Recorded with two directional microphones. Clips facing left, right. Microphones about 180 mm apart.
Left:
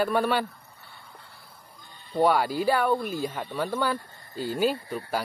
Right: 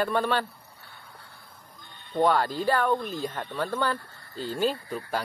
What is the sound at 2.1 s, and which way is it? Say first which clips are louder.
Speech: left 1 dB; 10° left (ahead or behind).